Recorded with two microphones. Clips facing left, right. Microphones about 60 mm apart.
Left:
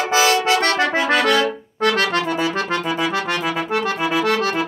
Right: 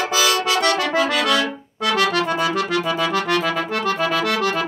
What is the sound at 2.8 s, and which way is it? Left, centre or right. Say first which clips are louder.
Accordion: right 1 dB; centre.